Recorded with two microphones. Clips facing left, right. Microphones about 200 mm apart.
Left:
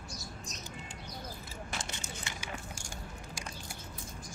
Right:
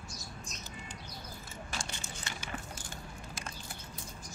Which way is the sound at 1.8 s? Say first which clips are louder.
Left 1 dB; 15° left (ahead or behind).